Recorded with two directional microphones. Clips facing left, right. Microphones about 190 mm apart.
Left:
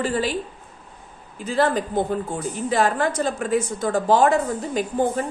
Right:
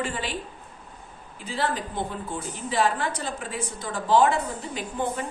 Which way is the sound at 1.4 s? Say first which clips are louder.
Left 8 dB; 45° left (ahead or behind).